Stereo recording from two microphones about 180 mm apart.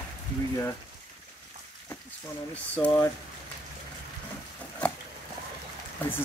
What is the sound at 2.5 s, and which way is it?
Speech, 5° left (ahead or behind).